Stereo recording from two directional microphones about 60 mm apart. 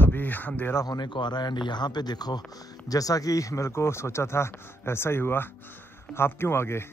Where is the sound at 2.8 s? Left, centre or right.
Left.